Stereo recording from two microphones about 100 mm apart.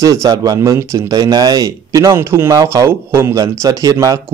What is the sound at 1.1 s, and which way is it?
Speech, 40° right (ahead or behind).